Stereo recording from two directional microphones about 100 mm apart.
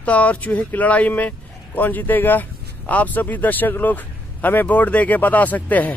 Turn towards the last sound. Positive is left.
turn(degrees=15)  # may be behind; listen again after turning